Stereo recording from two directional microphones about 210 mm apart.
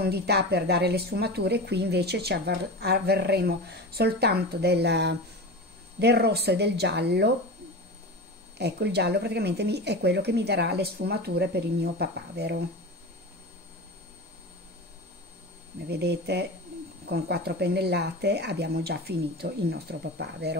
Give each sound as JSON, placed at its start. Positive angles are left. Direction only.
{"t": 0.0, "sound": "speech", "side_deg": -50}
{"t": 8.5, "sound": "speech", "side_deg": -50}
{"t": 15.9, "sound": "speech", "side_deg": -50}